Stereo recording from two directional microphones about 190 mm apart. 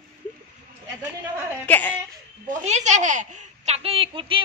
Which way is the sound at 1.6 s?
10° left (ahead or behind).